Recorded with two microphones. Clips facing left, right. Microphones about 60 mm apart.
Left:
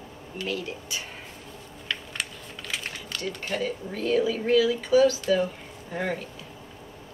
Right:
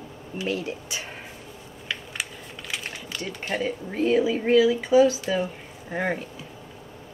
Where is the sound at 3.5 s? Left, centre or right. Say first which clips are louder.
Right 5 dB; right.